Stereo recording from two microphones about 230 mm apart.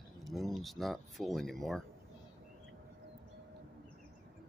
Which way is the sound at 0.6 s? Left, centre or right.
Centre.